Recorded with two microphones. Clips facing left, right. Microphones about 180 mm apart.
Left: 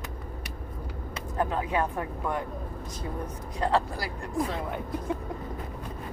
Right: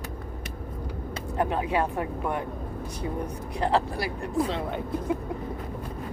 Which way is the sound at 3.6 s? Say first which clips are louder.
Right 1 dB; 25° right (ahead or behind).